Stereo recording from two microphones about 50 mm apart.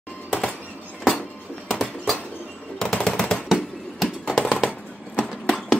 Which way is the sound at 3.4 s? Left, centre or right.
Centre.